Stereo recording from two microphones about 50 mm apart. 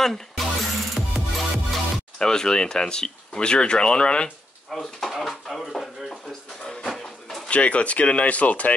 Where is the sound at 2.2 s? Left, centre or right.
Centre.